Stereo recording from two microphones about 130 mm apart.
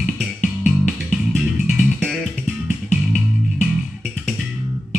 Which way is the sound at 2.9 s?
5° right (ahead or behind).